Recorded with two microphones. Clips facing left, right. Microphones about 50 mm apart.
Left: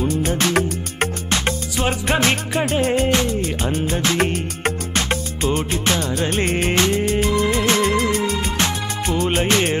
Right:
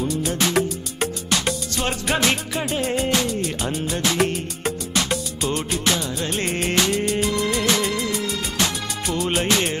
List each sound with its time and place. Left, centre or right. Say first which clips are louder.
0.1 s music: left 2 dB; left